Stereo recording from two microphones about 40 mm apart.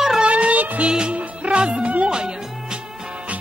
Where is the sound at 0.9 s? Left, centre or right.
Right.